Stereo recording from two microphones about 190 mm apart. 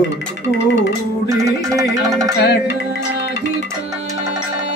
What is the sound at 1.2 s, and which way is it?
Music, 15° right (ahead or behind).